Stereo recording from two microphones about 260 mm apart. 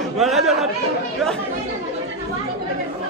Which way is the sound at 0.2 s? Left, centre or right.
Centre.